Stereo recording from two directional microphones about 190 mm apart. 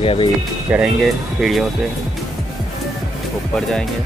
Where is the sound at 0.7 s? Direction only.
5° right (ahead or behind).